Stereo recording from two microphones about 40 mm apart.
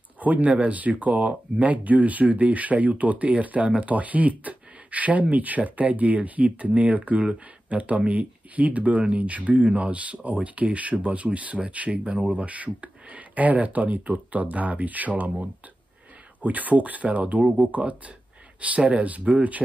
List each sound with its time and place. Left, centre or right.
0.2 s speech: right
11.9 s speech: right
16.3 s speech: right